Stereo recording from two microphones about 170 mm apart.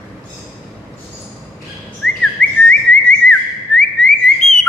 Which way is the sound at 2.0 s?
5° left (ahead or behind).